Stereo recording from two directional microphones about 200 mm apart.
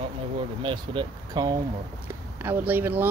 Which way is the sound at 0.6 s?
25° right (ahead or behind).